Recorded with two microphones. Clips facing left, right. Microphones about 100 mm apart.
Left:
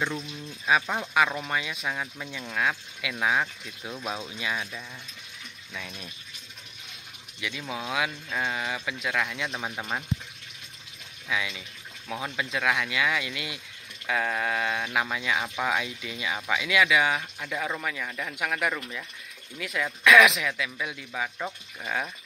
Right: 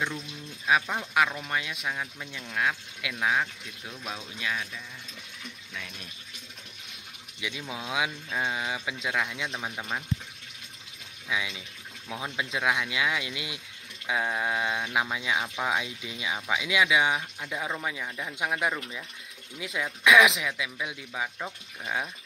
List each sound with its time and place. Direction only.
0.7 s speech: centre (ahead or behind)
3.8 s speech: 30° left (ahead or behind)
4.4 s speech: 15° left (ahead or behind)
7.3 s speech: 15° right (ahead or behind)
9.5 s speech: 5° left (ahead or behind)
11.2 s speech: 15° right (ahead or behind)